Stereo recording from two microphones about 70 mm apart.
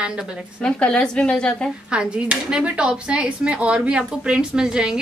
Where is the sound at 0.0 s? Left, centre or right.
Centre.